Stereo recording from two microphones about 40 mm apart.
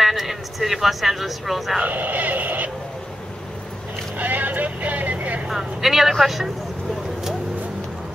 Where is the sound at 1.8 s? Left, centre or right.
Right.